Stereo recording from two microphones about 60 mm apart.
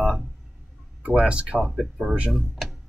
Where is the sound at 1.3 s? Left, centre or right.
Right.